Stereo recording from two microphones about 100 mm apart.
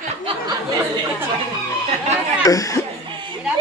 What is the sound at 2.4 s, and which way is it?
Speech, 35° left (ahead or behind).